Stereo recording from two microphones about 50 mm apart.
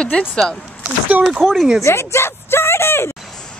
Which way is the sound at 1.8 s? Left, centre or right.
Left.